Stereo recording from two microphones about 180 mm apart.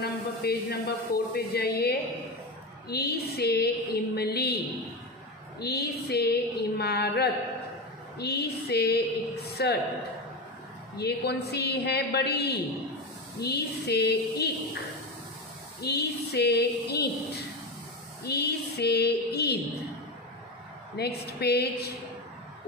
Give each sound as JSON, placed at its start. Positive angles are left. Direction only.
{"t": 0.0, "sound": "a woman's voice", "side_deg": 60}
{"t": 5.6, "sound": "a woman's voice", "side_deg": 60}
{"t": 11.0, "sound": "a woman's voice", "side_deg": 65}
{"t": 15.8, "sound": "a woman's voice", "side_deg": 65}
{"t": 18.2, "sound": "a woman's voice", "side_deg": 65}
{"t": 20.9, "sound": "a woman's voice", "side_deg": 65}